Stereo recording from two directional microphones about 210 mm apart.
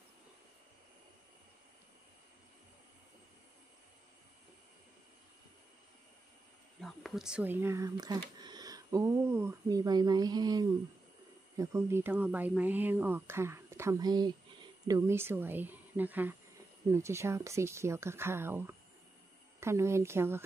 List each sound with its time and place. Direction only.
6.8 s speech: centre (ahead or behind)